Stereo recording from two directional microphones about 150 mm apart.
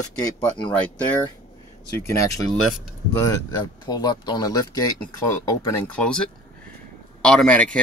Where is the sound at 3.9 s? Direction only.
30° left (ahead or behind).